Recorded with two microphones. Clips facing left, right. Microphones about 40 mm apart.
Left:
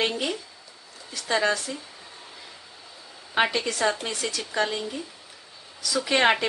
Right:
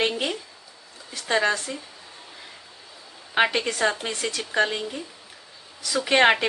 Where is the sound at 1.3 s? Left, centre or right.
Right.